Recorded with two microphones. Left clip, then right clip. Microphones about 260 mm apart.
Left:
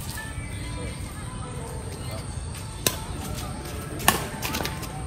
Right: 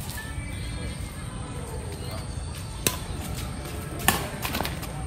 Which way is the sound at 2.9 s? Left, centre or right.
Centre.